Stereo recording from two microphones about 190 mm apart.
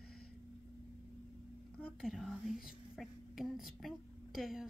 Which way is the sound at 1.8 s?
Centre (ahead or behind).